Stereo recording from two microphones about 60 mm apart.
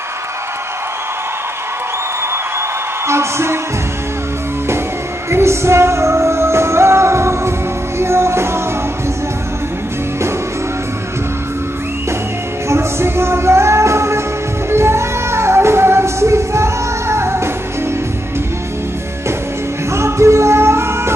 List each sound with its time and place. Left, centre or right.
3.1 s speech: right
5.3 s music: right
12.6 s music: right
19.9 s music: right